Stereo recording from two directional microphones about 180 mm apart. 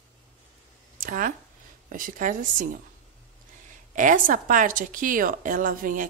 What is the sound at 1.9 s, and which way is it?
Speech, 50° right (ahead or behind).